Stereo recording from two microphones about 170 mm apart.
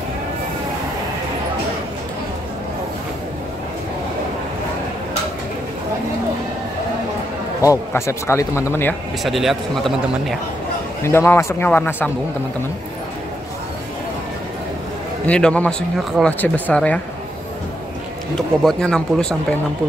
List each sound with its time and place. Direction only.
7.6 s speech: 15° left (ahead or behind)
9.2 s speech: centre (ahead or behind)
11.0 s speech: 15° left (ahead or behind)
15.2 s speech: 5° left (ahead or behind)
18.6 s speech: 5° left (ahead or behind)